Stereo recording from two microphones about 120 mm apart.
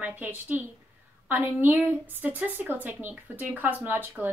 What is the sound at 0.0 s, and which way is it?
A woman's voice, 15° right (ahead or behind).